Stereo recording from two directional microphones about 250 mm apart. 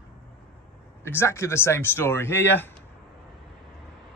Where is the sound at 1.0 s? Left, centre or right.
Centre.